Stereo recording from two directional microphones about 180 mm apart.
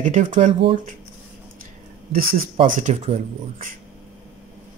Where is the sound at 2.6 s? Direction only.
40° right (ahead or behind).